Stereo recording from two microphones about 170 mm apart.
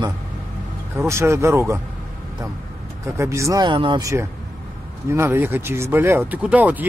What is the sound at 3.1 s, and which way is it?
Speech, 15° right (ahead or behind).